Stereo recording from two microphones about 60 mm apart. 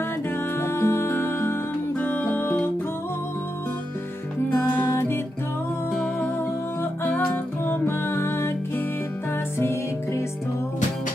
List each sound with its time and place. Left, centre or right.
0.6 s music: left
4.8 s music: left
6.8 s music: left